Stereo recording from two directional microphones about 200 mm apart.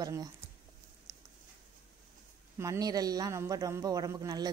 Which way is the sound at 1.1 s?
15° right (ahead or behind).